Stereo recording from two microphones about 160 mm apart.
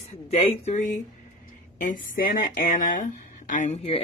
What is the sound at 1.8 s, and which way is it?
Speech, 60° left (ahead or behind).